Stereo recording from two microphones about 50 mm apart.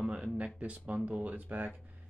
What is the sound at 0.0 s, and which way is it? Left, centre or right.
Speech, right.